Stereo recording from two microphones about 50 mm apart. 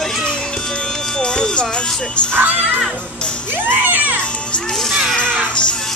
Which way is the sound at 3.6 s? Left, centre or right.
Right.